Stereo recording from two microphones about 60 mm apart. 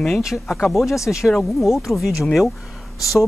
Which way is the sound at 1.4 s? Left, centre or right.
Centre.